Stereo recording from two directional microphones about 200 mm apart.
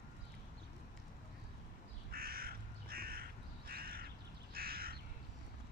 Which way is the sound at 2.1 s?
50° right (ahead or behind).